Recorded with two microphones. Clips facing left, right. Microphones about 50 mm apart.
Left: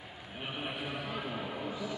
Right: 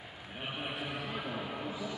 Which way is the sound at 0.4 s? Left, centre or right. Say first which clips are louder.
Even; centre.